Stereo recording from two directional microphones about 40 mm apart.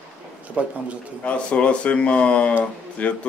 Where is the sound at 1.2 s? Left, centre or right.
Left.